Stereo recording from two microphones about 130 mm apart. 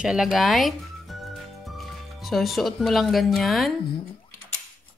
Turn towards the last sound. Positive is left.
turn(degrees=0)  # may be behind; listen again after turning